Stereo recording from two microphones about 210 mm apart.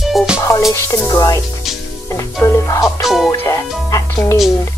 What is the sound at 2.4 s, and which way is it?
Music, 15° left (ahead or behind).